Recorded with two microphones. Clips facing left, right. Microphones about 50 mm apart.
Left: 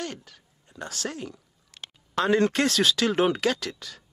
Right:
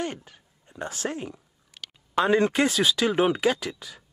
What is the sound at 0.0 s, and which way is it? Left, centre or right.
Speech, right.